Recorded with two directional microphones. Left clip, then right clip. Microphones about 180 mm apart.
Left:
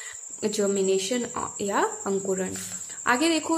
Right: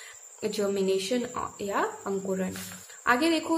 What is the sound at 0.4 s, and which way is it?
A woman's voice, 15° left (ahead or behind).